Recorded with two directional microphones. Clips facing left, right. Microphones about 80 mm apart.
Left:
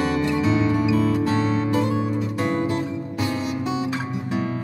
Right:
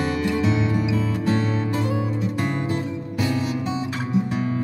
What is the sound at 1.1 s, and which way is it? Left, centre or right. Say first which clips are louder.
Music: left 2 dB; left.